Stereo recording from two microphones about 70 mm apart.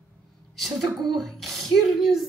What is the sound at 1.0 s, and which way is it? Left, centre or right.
Speech, centre.